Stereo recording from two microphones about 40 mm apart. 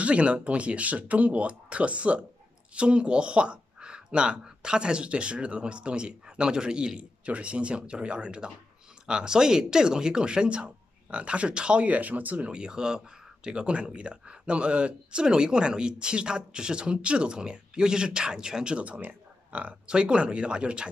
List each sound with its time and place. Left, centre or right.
0.0 s speech: right
7.0 s speech: right
11.9 s speech: right
12.4 s speech: right
18.9 s a sound: right
19.9 s speech: right